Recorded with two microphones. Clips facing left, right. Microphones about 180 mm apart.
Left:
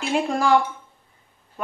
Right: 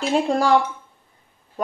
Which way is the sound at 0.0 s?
35° right (ahead or behind).